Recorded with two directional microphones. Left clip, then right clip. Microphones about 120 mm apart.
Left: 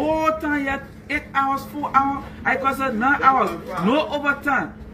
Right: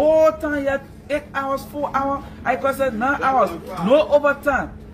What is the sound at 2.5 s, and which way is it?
A man's voice, 35° right (ahead or behind).